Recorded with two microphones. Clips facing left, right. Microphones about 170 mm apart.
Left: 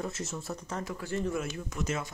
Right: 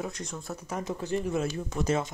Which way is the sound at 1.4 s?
30° right (ahead or behind).